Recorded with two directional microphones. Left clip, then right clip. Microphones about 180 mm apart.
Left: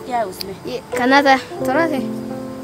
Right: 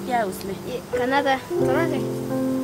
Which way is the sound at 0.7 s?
55° left (ahead or behind).